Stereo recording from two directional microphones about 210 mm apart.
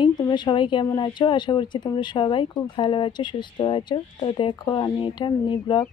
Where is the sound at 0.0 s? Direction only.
20° left (ahead or behind).